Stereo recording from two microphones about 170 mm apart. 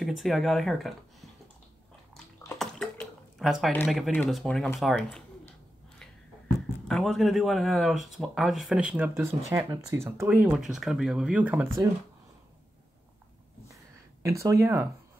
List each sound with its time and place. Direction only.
0.0 s speech: centre (ahead or behind)
2.6 s drip: centre (ahead or behind)
3.7 s speech: centre (ahead or behind)
6.9 s speech: centre (ahead or behind)
14.2 s speech: 15° right (ahead or behind)